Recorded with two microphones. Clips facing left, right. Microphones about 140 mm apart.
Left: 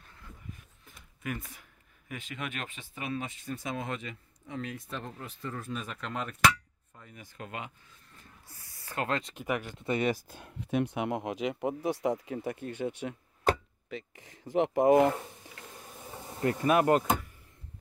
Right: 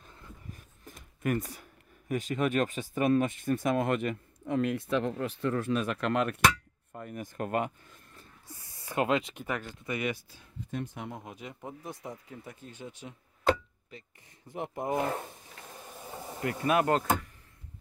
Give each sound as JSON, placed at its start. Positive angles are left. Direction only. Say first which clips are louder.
{"t": 0.5, "sound": "speech", "louder": "right 2 dB", "side_deg": -40}
{"t": 6.9, "sound": "speech", "louder": "right 11 dB", "side_deg": -55}
{"t": 8.5, "sound": "speech", "louder": "right 5 dB", "side_deg": -25}
{"t": 9.5, "sound": "speech", "louder": "left 3 dB", "side_deg": 15}
{"t": 9.8, "sound": "speech", "louder": "left 4 dB", "side_deg": 30}
{"t": 10.2, "sound": "speech", "louder": "left 2 dB", "side_deg": 60}
{"t": 13.8, "sound": "speech", "louder": "left 12 dB", "side_deg": 90}
{"t": 16.7, "sound": "speech", "louder": "left 1 dB", "side_deg": 15}